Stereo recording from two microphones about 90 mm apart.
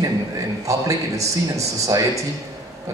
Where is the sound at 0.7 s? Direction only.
35° right (ahead or behind).